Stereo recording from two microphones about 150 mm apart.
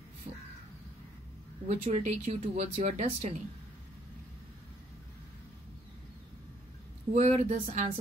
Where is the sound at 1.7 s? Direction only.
50° right (ahead or behind).